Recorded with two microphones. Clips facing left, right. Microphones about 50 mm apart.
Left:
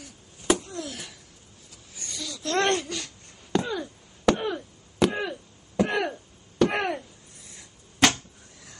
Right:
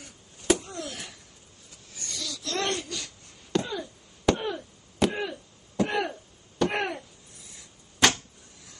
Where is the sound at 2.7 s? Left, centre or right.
Left.